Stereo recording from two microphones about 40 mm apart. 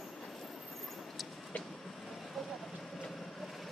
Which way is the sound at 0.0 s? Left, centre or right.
Centre.